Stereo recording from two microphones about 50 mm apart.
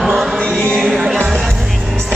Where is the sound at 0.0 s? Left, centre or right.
Centre.